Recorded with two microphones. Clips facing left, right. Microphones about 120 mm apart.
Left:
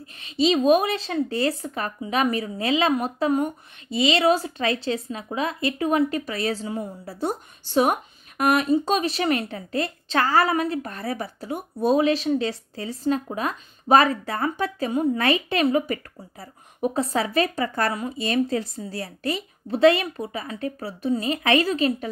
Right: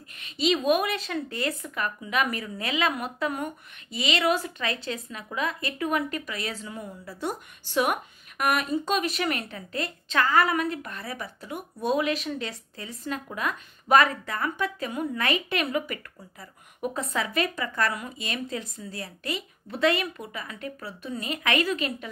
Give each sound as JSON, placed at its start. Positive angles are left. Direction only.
{"t": 0.2, "sound": "a woman's voice", "side_deg": 30}